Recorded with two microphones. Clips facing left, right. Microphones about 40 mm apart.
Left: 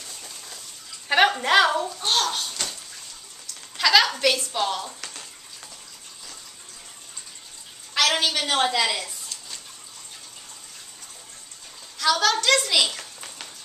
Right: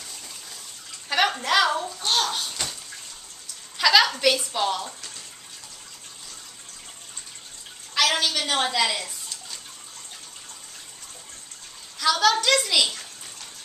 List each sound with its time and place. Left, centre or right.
1.0 s a sound: left; by 4.1 s centre
4.2 s a woman's voice: centre
7.9 s speech: centre
12.0 s a woman's voice: centre